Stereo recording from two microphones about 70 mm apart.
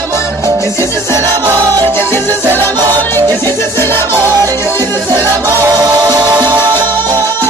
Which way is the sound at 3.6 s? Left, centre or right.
Left.